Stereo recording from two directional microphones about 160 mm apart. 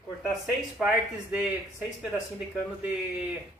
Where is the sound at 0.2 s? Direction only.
5° right (ahead or behind).